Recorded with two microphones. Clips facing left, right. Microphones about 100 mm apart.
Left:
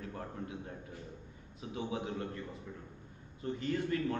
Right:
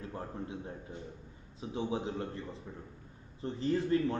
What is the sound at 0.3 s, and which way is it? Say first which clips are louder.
A man's voice: right 2 dB; 25° right (ahead or behind).